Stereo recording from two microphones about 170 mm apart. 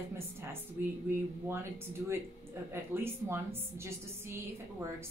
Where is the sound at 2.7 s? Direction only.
15° right (ahead or behind).